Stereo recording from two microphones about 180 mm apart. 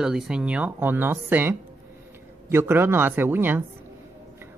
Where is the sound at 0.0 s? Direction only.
5° right (ahead or behind).